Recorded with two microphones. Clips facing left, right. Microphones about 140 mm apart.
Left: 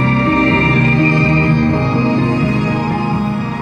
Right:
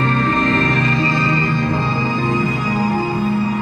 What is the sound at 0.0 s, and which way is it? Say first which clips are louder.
Music: left 4 dB; 60° left (ahead or behind).